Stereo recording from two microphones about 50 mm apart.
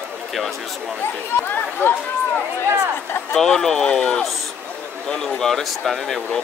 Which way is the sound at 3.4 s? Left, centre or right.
Centre.